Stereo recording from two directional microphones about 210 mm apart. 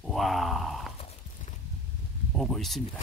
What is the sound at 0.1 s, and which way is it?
Groan, centre (ahead or behind).